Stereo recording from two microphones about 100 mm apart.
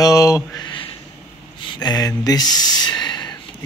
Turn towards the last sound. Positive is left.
turn(degrees=45)  # may be behind; listen again after turning